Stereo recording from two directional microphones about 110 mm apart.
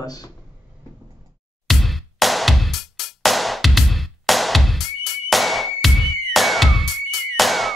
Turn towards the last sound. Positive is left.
turn(degrees=0)  # may be behind; listen again after turning